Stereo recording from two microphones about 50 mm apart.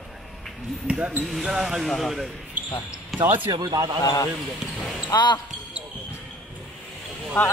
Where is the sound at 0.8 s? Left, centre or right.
Right.